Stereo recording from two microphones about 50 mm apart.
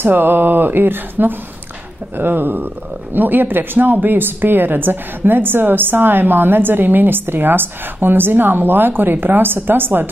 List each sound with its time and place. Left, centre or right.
0.0 s speech: right